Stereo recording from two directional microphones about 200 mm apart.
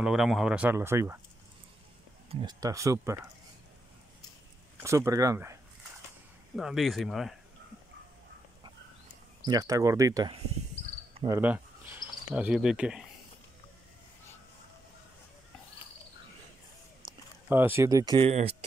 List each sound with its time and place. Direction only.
0.0 s speech: 5° right (ahead or behind)
2.2 s speech: 20° right (ahead or behind)
4.7 s speech: 15° right (ahead or behind)
6.5 s speech: centre (ahead or behind)
9.5 s speech: 20° right (ahead or behind)
17.0 s a sound: 25° right (ahead or behind)
17.5 s speech: 10° right (ahead or behind); by 18.6 s 30° right (ahead or behind)